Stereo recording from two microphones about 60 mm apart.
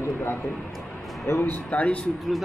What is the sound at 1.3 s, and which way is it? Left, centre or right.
Speech, left.